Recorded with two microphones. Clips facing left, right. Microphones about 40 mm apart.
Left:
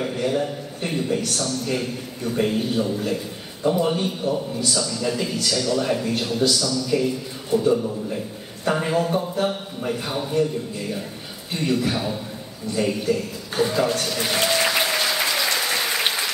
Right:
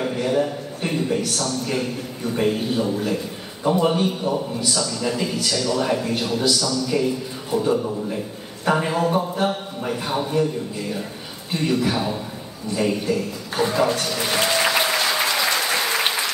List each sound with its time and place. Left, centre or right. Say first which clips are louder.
0.0 s a man's voice: right 2 dB; centre
4.6 s a man's voice: left 1 dB; centre
11.5 s a man's voice: right 2 dB; centre
12.7 s a sound: right 1 dB; centre